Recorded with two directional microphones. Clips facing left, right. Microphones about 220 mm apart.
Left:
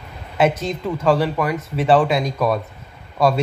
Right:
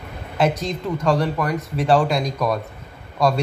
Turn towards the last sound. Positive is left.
turn(degrees=5)  # may be behind; listen again after turning